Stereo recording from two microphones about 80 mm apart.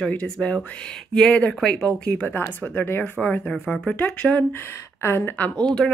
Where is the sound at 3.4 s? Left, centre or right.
Centre.